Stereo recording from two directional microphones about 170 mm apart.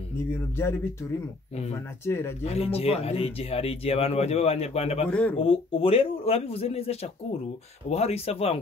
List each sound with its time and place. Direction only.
0.3 s speech: 15° left (ahead or behind)
2.0 s speech: 15° left (ahead or behind)
2.4 s speech: 35° left (ahead or behind)